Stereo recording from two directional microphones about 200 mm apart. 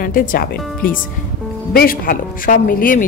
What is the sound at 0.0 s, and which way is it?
A woman's voice, 45° left (ahead or behind).